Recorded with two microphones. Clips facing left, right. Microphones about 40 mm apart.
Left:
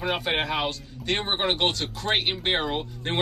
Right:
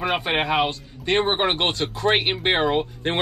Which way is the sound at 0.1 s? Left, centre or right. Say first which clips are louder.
Right 3 dB; right.